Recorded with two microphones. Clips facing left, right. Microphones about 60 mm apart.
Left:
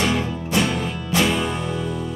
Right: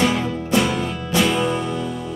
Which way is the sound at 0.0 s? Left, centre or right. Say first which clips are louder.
Right 2 dB; centre.